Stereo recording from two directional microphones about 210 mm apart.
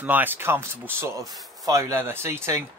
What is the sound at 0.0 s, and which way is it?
Speech, 10° right (ahead or behind).